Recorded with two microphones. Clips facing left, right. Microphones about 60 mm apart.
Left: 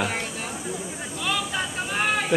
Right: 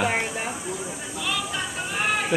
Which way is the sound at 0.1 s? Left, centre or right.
Right.